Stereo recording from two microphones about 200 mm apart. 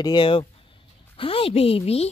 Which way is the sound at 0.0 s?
25° left (ahead or behind).